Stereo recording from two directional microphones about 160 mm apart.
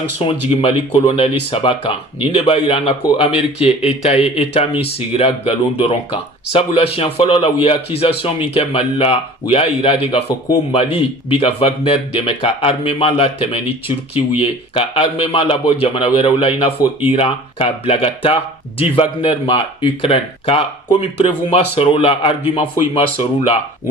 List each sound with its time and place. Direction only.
0.5 s speech: 35° left (ahead or behind)